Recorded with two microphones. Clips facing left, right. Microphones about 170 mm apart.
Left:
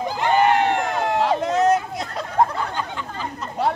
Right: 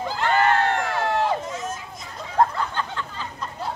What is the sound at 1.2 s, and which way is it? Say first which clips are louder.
Hubbub: left 7 dB; 80° left.